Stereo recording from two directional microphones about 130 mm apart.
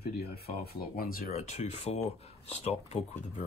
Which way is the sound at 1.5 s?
55° left (ahead or behind).